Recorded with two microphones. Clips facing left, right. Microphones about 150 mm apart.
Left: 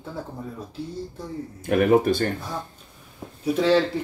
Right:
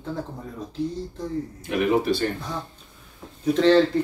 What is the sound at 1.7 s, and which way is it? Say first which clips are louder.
Speech: left 3 dB; 50° left (ahead or behind).